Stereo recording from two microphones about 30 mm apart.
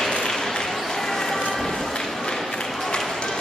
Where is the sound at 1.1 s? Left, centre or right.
Centre.